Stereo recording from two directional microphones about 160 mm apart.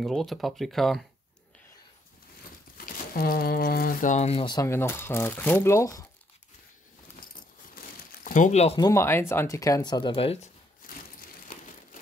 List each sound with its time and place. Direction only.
0.0 s speech: centre (ahead or behind)
2.8 s speech: 70° left (ahead or behind); by 4.5 s 40° left (ahead or behind)
4.5 s speech: 20° left (ahead or behind)
7.7 s crumpling: 60° left (ahead or behind)
8.7 s speech: 20° left (ahead or behind); by 10.5 s 40° left (ahead or behind)